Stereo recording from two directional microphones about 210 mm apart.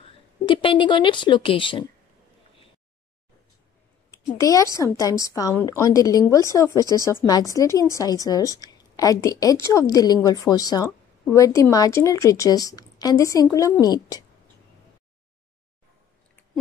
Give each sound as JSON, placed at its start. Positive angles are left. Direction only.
{"t": 0.5, "sound": "a woman's voice", "side_deg": 25}
{"t": 4.1, "sound": "a woman's voice", "side_deg": 15}